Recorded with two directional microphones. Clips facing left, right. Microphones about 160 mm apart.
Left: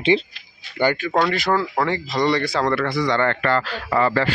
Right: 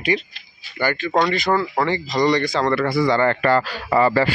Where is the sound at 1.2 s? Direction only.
5° left (ahead or behind).